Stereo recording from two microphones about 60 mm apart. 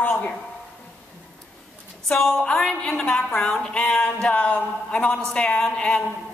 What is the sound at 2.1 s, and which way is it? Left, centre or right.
A woman's voice, centre.